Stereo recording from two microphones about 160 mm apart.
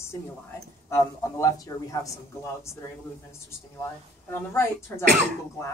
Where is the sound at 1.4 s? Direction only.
20° left (ahead or behind).